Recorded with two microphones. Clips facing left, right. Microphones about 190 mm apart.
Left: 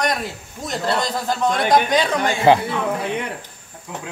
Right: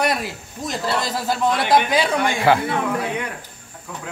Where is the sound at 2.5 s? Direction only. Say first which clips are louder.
Left 3 dB; 20° left (ahead or behind).